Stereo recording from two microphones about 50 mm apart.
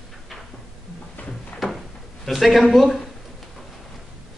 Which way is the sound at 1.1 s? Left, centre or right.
Left.